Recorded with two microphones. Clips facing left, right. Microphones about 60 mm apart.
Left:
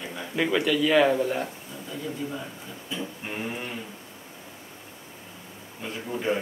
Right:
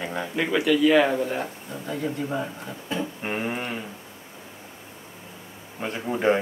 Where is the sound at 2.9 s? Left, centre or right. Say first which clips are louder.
Right 5 dB; right.